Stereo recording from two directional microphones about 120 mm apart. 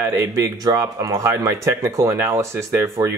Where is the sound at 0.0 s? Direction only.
25° right (ahead or behind).